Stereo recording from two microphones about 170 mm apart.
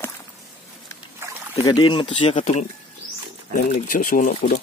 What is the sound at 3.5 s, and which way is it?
Speech, 55° left (ahead or behind).